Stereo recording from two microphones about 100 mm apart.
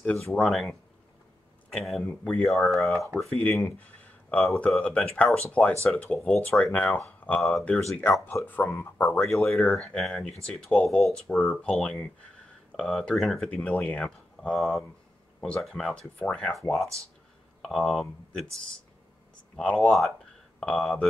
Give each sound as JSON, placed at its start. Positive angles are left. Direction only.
{"t": 0.0, "sound": "speech", "side_deg": 15}
{"t": 0.4, "sound": "speech", "side_deg": 0}
{"t": 1.7, "sound": "speech", "side_deg": 0}
{"t": 6.3, "sound": "speech", "side_deg": 5}
{"t": 6.7, "sound": "speech", "side_deg": 15}
{"t": 8.0, "sound": "speech", "side_deg": 25}
{"t": 9.3, "sound": "speech", "side_deg": 5}
{"t": 19.5, "sound": "speech", "side_deg": 10}